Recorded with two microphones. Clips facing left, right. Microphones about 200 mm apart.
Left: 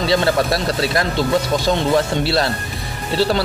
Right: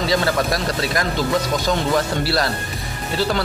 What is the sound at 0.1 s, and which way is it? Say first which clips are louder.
Speech: left 4 dB; 30° left (ahead or behind).